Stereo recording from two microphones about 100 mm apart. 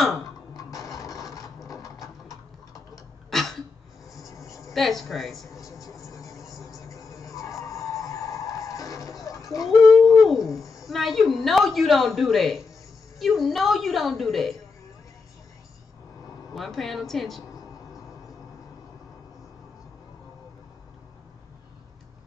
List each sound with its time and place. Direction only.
0.6 s printer: 35° left (ahead or behind)
2.9 s tick-tock: 5° left (ahead or behind)
4.3 s a sound: 35° left (ahead or behind)
4.7 s a woman's voice: centre (ahead or behind)
5.6 s a sound: 35° left (ahead or behind)
10.9 s a woman's voice: centre (ahead or behind)
16.5 s a woman's voice: centre (ahead or behind)